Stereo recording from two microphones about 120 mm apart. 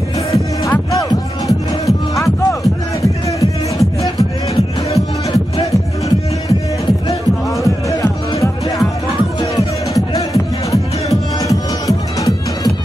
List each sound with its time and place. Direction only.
0.3 s music: 25° left (ahead or behind)
1.9 s music: centre (ahead or behind)
7.6 s music: 25° left (ahead or behind)
9.9 s music: 30° left (ahead or behind)